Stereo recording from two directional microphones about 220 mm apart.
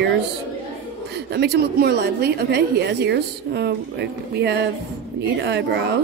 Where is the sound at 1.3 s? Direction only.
50° right (ahead or behind).